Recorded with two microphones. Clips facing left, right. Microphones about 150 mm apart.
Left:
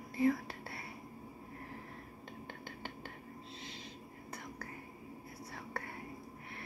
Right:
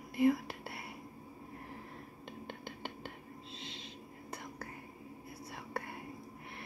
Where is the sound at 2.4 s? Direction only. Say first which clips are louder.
Right 3 dB; 20° right (ahead or behind).